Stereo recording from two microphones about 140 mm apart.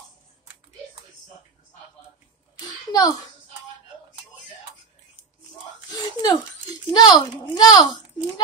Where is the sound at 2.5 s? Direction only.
30° left (ahead or behind).